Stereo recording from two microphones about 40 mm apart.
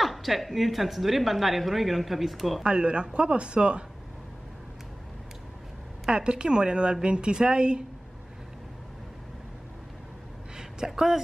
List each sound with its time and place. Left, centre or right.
0.0 s speech: centre
2.6 s speech: right
6.0 s speech: right
10.9 s speech: centre